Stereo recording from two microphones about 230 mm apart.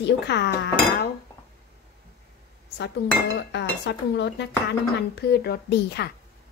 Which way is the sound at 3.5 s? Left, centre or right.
Left.